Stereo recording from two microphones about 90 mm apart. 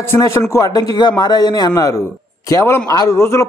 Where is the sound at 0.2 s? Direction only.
35° left (ahead or behind).